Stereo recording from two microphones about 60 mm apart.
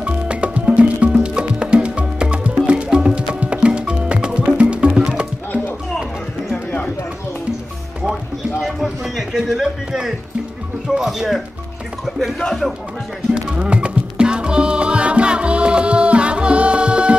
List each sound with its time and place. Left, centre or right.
0.0 s music: right
6.5 s run: left
8.5 s a sound: centre
11.0 s speech: centre
13.3 s music: centre